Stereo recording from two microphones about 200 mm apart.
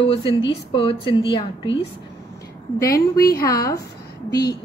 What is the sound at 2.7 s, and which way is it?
A woman's voice, 15° left (ahead or behind).